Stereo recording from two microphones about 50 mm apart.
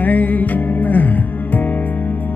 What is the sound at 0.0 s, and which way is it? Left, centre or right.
Music, left.